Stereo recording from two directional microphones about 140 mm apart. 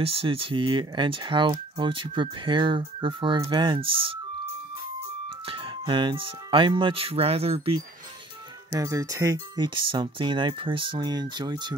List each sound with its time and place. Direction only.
0.0 s speech: 40° right (ahead or behind)
5.5 s speech: 40° right (ahead or behind)
8.7 s speech: 25° right (ahead or behind)